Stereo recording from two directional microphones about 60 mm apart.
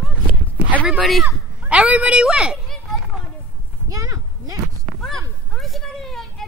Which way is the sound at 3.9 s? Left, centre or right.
Right.